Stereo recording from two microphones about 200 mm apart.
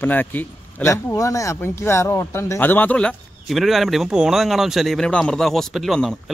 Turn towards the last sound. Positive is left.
turn(degrees=0)  # may be behind; listen again after turning